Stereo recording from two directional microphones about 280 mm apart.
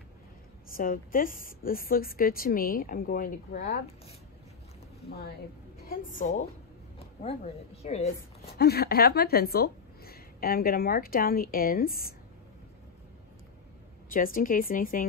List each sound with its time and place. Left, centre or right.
0.7 s a woman's voice: left
5.8 s a woman's voice: left
8.5 s a woman's voice: left
14.1 s a woman's voice: left